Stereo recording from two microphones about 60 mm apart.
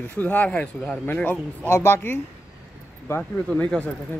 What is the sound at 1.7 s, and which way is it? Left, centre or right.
Speech, left.